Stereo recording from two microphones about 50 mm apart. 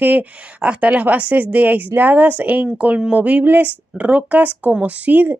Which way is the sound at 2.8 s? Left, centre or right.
Centre.